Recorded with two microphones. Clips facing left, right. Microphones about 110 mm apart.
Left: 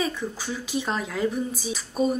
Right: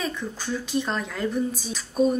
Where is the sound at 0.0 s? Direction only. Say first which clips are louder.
Left 2 dB; 5° left (ahead or behind).